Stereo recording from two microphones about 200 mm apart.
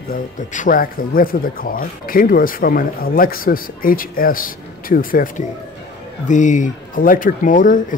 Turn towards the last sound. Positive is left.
turn(degrees=40)  # may be behind; listen again after turning